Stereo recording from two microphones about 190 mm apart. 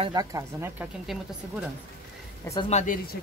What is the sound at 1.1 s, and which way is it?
Speech, centre (ahead or behind).